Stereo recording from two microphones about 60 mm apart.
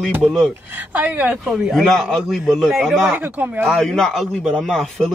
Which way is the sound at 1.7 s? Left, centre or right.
Centre.